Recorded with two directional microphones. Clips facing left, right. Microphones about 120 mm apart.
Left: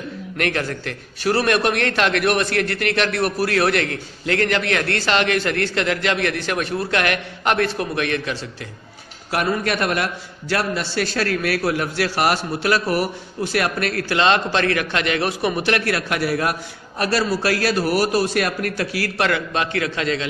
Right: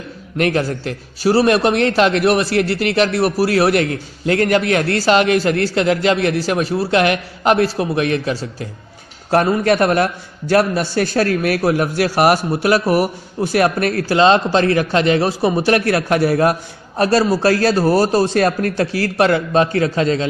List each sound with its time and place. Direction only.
0.4 s a man's voice: 30° right (ahead or behind)
3.2 s a man's voice: 10° right (ahead or behind)
3.6 s a man's voice: 25° right (ahead or behind)
4.9 s a man's voice: 35° right (ahead or behind); by 13.6 s 15° right (ahead or behind)
13.6 s a man's voice: 25° right (ahead or behind)